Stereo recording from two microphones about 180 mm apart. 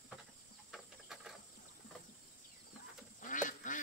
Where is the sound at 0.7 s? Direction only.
5° right (ahead or behind).